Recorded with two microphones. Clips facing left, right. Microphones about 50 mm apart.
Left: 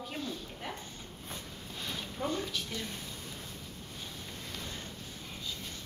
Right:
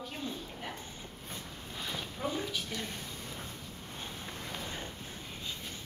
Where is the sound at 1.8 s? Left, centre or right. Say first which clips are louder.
Even; centre.